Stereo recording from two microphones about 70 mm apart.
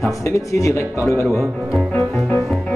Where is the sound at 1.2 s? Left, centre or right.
Right.